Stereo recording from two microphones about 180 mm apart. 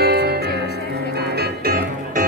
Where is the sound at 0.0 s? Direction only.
65° right (ahead or behind).